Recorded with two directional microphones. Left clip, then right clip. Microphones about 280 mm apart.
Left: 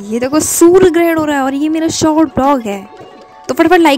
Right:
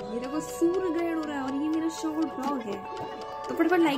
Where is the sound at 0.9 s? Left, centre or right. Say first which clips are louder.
Left 18 dB; left.